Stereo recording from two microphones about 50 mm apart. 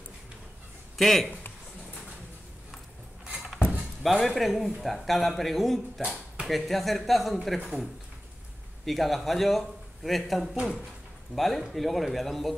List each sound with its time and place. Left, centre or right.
0.9 s a man's voice: centre
4.0 s a man's voice: centre
8.8 s a man's voice: centre